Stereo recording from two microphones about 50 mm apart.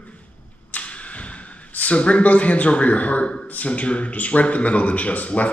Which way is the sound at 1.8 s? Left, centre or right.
Left.